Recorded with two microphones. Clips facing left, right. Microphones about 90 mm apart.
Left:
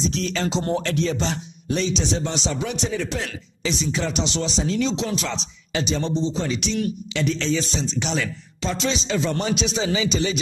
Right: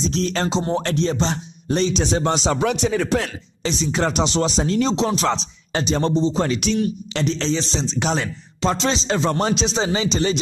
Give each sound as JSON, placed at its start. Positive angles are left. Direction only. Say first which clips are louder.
{"t": 0.0, "sound": "speech", "louder": "right 2 dB", "side_deg": -35}
{"t": 2.5, "sound": "speech", "louder": "right 6 dB", "side_deg": -60}
{"t": 3.6, "sound": "speech", "louder": "right 3 dB", "side_deg": -40}
{"t": 7.2, "sound": "speech", "louder": "right 1 dB", "side_deg": -30}